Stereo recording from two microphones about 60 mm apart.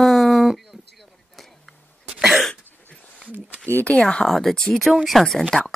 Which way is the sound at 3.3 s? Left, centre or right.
Left.